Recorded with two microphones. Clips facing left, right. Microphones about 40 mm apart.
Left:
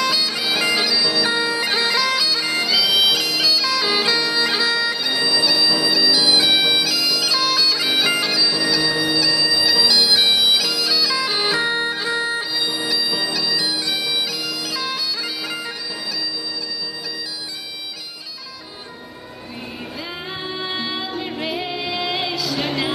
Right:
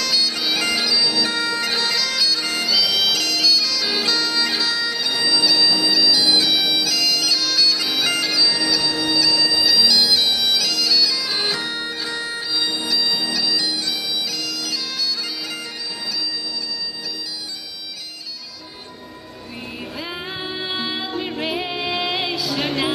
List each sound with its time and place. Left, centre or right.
0.0 s bagpipes: centre
20.5 s music: centre